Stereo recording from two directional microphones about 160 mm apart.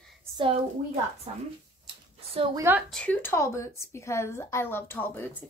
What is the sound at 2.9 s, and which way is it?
Speech, 10° left (ahead or behind).